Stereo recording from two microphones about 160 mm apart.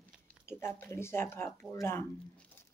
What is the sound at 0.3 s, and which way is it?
Speech, 15° left (ahead or behind).